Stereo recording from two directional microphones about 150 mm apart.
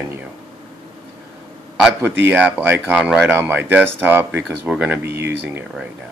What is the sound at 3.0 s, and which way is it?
Speech, centre (ahead or behind).